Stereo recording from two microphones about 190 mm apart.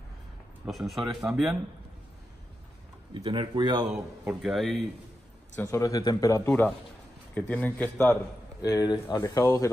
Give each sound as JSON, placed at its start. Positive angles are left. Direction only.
{"t": 0.7, "sound": "speech", "side_deg": 0}
{"t": 3.3, "sound": "speech", "side_deg": -25}
{"t": 3.9, "sound": "a man's voice", "side_deg": -5}
{"t": 5.6, "sound": "speech", "side_deg": 15}
{"t": 8.6, "sound": "speech", "side_deg": 20}